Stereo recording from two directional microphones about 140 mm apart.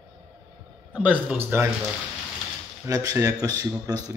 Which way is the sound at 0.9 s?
10° right (ahead or behind).